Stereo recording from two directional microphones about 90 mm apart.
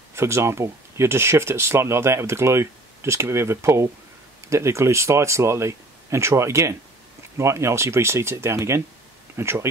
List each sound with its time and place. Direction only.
0.1 s speech: 30° right (ahead or behind)